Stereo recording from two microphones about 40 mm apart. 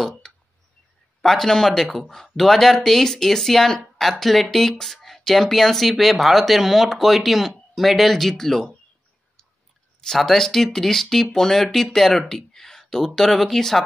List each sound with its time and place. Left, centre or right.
1.2 s speech: centre
10.1 s speech: centre